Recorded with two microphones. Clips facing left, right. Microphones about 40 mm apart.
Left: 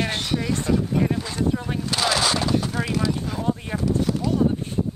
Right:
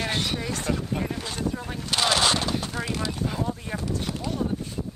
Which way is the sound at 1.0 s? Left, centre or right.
Centre.